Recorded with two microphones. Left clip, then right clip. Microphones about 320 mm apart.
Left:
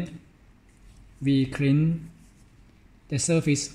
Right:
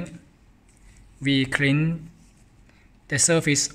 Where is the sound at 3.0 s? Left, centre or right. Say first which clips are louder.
Right 4 dB; right.